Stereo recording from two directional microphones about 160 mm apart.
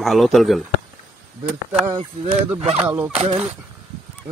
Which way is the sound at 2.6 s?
40° right (ahead or behind).